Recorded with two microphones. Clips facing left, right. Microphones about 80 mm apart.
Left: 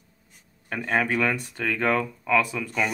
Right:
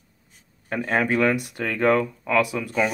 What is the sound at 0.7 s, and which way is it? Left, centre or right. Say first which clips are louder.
Speech: right 2 dB; right.